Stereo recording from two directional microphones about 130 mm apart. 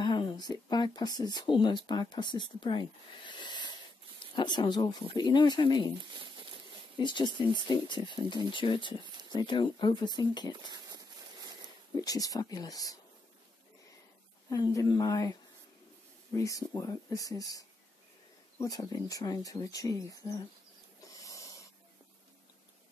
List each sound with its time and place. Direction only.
0.0 s speech: 35° left (ahead or behind)
7.0 s speech: 35° left (ahead or behind)
11.9 s speech: 30° left (ahead or behind)
14.5 s speech: 25° left (ahead or behind)
16.3 s speech: 25° left (ahead or behind)
21.1 s snort: 25° left (ahead or behind)